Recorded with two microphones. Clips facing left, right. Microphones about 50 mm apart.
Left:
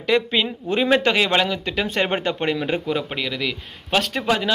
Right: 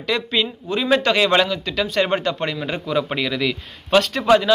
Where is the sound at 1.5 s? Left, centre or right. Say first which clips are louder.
Right 1 dB; left.